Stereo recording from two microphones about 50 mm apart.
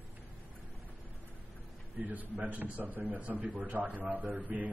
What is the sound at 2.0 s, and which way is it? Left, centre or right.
A man's voice, right.